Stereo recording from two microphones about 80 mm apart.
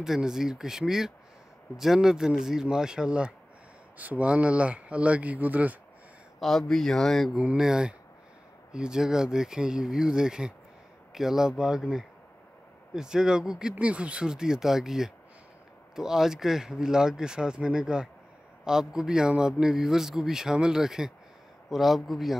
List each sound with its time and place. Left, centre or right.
0.0 s a man's voice: centre
6.4 s speech: centre
7.3 s a man's voice: centre